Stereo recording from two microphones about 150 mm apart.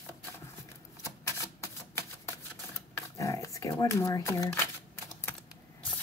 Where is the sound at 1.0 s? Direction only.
20° left (ahead or behind).